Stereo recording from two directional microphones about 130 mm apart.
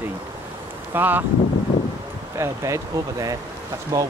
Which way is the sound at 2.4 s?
25° right (ahead or behind).